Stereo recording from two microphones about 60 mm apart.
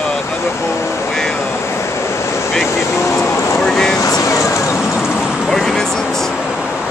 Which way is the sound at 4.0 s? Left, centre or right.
Left.